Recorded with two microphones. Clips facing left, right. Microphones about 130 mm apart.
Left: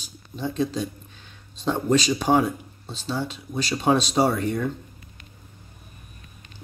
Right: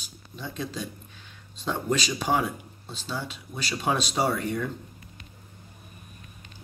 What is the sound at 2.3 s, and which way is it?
Speech, 20° left (ahead or behind).